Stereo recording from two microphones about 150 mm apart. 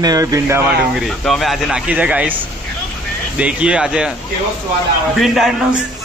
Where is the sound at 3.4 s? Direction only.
10° right (ahead or behind).